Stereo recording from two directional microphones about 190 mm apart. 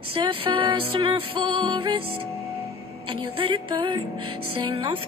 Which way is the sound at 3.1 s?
25° right (ahead or behind).